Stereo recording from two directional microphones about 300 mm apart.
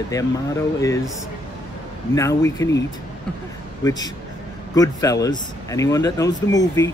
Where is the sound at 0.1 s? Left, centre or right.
Centre.